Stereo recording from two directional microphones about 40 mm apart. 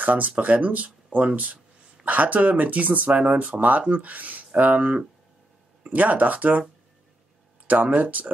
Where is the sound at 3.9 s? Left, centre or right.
Right.